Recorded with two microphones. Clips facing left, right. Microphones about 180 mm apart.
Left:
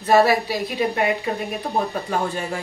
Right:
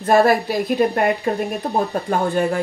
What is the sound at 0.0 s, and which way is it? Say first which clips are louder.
A woman's voice: right 2 dB; 50° right (ahead or behind).